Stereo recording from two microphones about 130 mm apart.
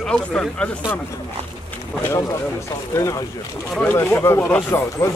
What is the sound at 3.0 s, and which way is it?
Speech, 25° left (ahead or behind).